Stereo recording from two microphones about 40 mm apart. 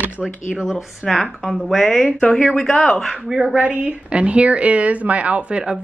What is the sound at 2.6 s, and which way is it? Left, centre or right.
Speech, centre.